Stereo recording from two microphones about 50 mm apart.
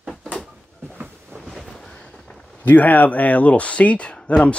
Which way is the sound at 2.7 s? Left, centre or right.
Left.